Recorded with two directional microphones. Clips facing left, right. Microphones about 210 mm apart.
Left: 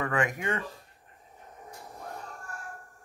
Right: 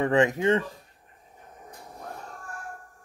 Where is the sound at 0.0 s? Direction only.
25° right (ahead or behind).